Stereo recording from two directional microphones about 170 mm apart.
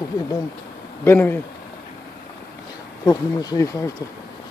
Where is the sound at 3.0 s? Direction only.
20° left (ahead or behind).